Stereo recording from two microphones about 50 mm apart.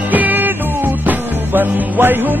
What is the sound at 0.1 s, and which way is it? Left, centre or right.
Music, right.